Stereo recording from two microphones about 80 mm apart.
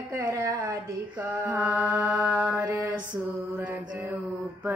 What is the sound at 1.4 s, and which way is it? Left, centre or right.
Mantra, right.